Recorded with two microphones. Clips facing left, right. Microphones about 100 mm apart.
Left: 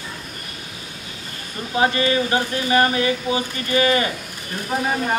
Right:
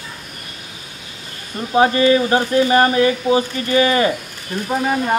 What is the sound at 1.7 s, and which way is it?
Speech, 30° right (ahead or behind).